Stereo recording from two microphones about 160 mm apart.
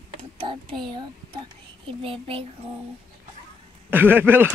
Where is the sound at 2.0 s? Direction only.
35° right (ahead or behind).